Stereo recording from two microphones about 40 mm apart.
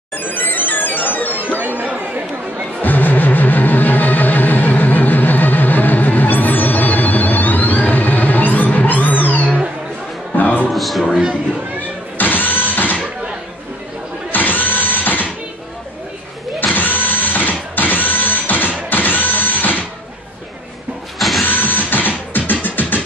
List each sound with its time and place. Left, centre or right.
0.2 s music: left
1.8 s chatter: right
2.8 s music: left
10.7 s music: centre
12.2 s music: left
14.3 s tools: left
16.5 s a sound: left
21.2 s mechanisms: centre
21.5 s music: left